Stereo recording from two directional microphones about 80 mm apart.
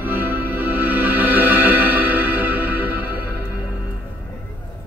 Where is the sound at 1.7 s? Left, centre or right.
Right.